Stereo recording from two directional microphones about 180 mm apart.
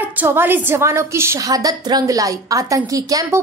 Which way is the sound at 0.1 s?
10° right (ahead or behind).